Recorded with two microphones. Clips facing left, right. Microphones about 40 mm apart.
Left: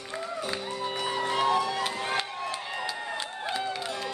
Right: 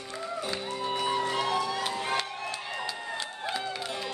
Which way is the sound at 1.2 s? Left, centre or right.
Left.